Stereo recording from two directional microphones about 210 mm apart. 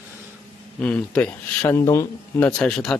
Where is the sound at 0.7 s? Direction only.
5° left (ahead or behind).